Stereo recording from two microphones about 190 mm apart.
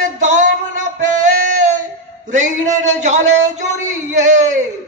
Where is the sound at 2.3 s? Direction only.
40° right (ahead or behind).